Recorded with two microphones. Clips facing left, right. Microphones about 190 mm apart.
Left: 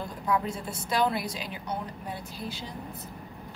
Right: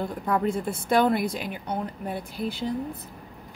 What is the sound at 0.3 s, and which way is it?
Speech, 55° right (ahead or behind).